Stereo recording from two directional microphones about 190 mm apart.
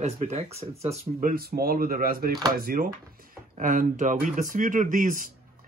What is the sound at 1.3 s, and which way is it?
Speech, 50° right (ahead or behind).